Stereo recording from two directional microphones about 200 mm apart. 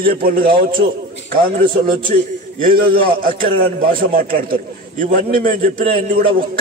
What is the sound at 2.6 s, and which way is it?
A man's voice, 50° right (ahead or behind).